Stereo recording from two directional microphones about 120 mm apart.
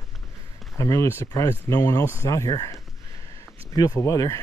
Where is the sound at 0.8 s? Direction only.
25° left (ahead or behind).